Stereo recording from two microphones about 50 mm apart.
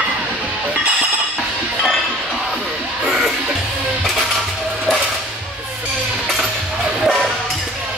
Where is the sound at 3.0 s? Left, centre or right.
Centre.